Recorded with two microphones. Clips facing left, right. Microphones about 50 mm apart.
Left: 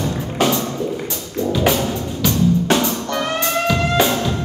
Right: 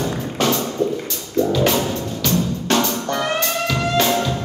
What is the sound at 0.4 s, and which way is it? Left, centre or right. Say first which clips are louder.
Music: left 1 dB; centre.